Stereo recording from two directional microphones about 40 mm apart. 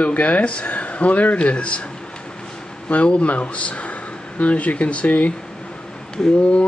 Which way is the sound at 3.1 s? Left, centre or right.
Left.